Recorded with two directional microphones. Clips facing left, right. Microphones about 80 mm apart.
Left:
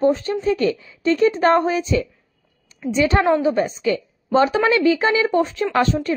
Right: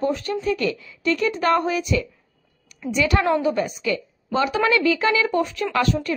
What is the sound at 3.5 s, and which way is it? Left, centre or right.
A woman's voice, left.